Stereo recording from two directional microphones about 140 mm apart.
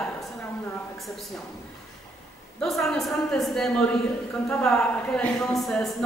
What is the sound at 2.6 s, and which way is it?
Speech, centre (ahead or behind).